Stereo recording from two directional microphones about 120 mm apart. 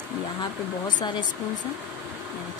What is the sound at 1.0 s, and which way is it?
Speech, 40° left (ahead or behind).